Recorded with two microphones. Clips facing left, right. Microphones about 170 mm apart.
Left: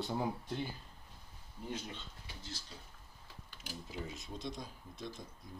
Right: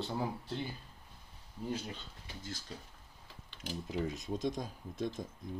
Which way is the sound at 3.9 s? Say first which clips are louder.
Right 9 dB; 45° right (ahead or behind).